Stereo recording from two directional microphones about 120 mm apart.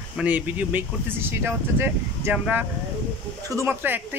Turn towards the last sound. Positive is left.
turn(degrees=-15)  # may be behind; listen again after turning